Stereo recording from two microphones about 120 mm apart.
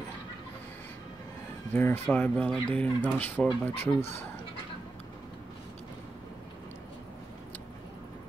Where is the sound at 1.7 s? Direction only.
20° left (ahead or behind).